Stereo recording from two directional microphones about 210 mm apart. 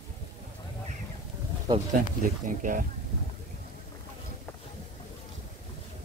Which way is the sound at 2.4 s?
40° right (ahead or behind).